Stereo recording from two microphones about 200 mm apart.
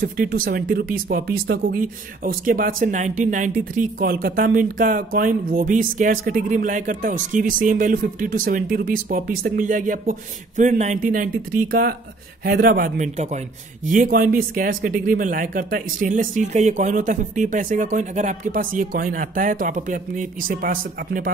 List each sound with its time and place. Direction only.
0.0 s speech: 45° right (ahead or behind)